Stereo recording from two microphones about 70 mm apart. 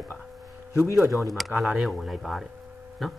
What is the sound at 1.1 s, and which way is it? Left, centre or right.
Speech, centre.